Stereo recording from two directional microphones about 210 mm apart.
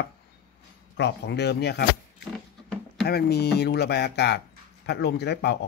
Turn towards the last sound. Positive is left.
turn(degrees=50)  # may be behind; listen again after turning